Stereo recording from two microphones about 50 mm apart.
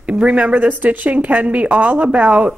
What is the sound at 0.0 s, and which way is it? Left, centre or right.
A woman's voice, right.